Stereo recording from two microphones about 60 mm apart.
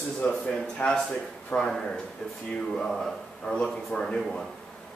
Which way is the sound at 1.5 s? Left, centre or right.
Left.